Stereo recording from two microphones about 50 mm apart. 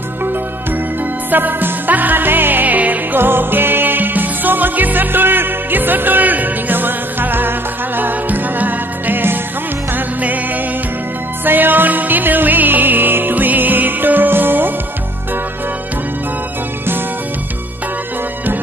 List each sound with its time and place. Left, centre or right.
1.3 s music: right
3.2 s music: right